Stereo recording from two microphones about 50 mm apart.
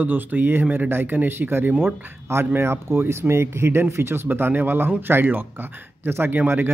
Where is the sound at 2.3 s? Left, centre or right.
Right.